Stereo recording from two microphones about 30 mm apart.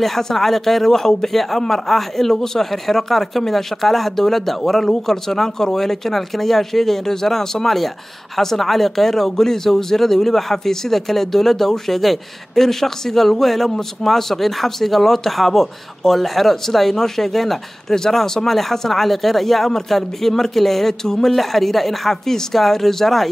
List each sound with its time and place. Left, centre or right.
0.2 s speech: centre
18.2 s speech: centre
18.5 s speech: centre